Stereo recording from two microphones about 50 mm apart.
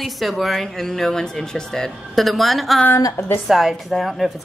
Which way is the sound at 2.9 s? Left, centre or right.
Left.